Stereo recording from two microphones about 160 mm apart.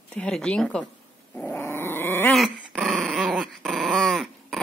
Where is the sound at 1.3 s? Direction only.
15° left (ahead or behind).